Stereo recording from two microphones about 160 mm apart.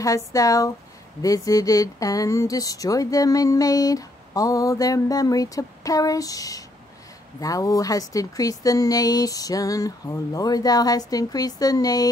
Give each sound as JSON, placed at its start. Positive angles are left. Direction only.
{"t": 0.0, "sound": "speech", "side_deg": 20}